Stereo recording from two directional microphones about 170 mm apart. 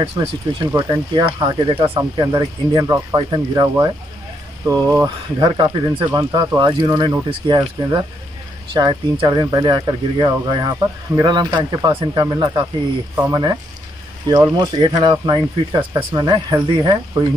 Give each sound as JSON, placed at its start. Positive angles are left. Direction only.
{"t": 0.0, "sound": "speech", "side_deg": -30}
{"t": 0.7, "sound": "speech", "side_deg": -20}
{"t": 5.4, "sound": "speech", "side_deg": -25}